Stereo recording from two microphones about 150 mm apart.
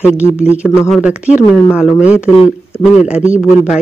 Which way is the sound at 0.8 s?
5° right (ahead or behind).